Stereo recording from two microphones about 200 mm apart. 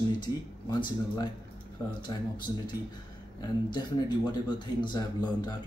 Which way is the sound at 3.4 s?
20° left (ahead or behind).